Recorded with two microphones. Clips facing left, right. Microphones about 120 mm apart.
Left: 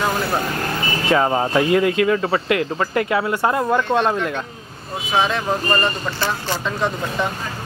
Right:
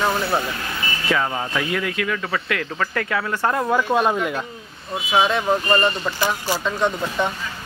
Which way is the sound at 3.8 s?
5° right (ahead or behind).